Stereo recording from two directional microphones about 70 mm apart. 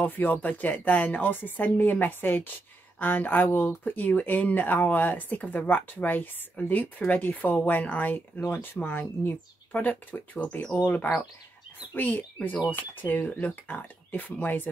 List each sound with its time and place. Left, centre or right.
0.0 s speech: left
10.8 s speech: left